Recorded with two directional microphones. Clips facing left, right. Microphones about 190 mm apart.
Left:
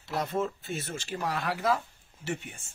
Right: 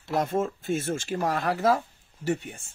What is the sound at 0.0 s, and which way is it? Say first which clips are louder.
Speech: right 4 dB; 50° right (ahead or behind).